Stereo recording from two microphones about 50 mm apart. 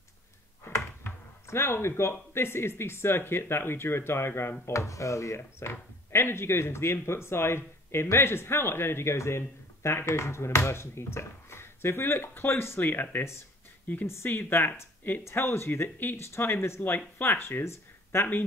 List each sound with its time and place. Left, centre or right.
1.5 s speech: left
4.6 s speech: left
13.2 s speech: left
14.3 s speech: left
15.2 s speech: left